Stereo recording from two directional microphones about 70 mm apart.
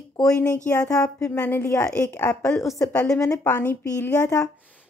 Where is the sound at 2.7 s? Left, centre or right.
Left.